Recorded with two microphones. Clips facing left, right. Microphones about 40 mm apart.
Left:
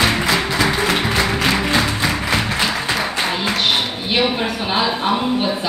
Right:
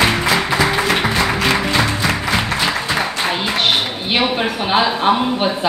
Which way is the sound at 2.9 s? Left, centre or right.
Centre.